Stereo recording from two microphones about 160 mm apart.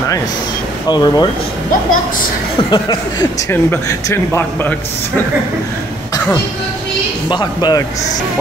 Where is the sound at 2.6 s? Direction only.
25° left (ahead or behind).